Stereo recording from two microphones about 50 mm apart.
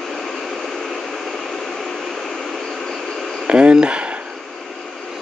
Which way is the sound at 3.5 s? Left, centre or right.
Centre.